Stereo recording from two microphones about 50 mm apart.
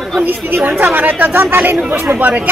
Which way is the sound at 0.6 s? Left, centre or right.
Right.